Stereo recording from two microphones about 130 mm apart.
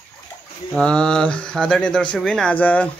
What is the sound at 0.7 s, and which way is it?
Speech, 5° left (ahead or behind).